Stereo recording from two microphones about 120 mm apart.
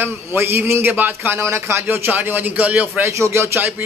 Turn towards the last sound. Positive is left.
turn(degrees=-20)  # may be behind; listen again after turning